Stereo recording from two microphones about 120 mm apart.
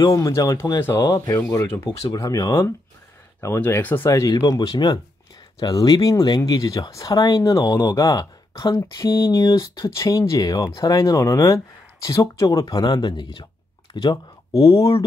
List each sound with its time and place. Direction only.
0.0 s speech: 25° left (ahead or behind)
1.4 s speech: 20° left (ahead or behind); by 13.5 s 40° left (ahead or behind)
14.0 s speech: 30° left (ahead or behind)